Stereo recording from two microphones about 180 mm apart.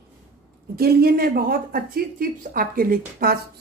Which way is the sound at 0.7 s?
60° right (ahead or behind).